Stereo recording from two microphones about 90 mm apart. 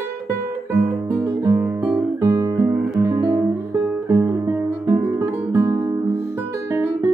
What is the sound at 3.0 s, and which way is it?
Music, 25° right (ahead or behind).